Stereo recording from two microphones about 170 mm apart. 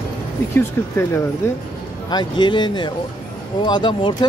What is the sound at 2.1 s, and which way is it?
Speech, 25° left (ahead or behind).